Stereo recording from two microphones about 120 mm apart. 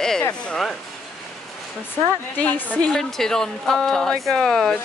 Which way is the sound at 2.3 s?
15° left (ahead or behind).